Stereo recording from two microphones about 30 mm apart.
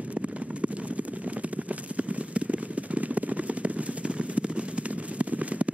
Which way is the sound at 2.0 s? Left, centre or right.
Right.